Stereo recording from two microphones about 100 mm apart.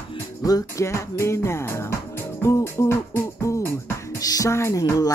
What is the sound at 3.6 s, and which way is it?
Music, 25° left (ahead or behind).